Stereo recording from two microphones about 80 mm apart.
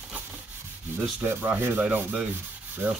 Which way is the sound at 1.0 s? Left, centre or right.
Centre.